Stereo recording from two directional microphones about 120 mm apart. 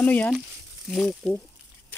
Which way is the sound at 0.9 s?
5° left (ahead or behind).